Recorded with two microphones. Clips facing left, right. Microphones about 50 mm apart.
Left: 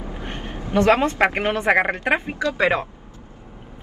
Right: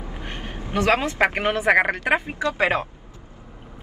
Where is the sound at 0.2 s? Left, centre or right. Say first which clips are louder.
Even; right.